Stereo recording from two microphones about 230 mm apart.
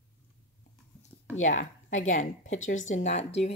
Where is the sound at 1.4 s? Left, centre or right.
Left.